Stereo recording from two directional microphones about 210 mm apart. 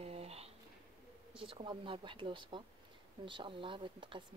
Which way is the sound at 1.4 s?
25° right (ahead or behind).